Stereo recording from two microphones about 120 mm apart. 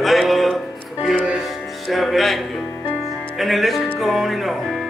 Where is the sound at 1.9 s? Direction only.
Centre (ahead or behind).